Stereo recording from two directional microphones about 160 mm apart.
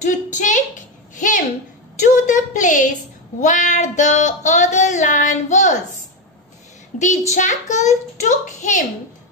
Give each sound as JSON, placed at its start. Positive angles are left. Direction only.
{"t": 0.0, "sound": "a sound", "side_deg": 50}
{"t": 3.3, "sound": "child singing", "side_deg": 50}
{"t": 7.0, "sound": "a child's voice", "side_deg": 45}